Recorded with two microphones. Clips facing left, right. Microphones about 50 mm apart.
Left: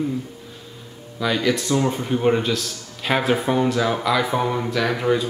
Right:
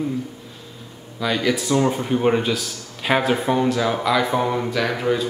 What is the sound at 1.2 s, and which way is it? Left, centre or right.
Speech, centre.